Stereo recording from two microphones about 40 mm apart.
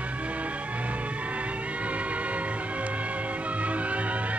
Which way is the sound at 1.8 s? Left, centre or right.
Right.